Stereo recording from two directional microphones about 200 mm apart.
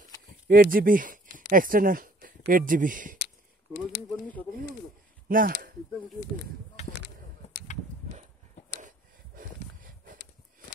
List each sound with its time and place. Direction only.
0.5 s speech: 45° right (ahead or behind)
4.1 s speech: 10° left (ahead or behind)
5.3 s speech: 45° right (ahead or behind)